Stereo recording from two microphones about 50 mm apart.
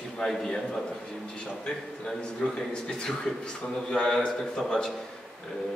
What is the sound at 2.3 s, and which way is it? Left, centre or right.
A man's voice, centre.